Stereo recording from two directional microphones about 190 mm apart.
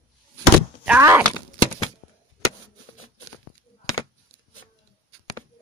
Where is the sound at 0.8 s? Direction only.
10° right (ahead or behind).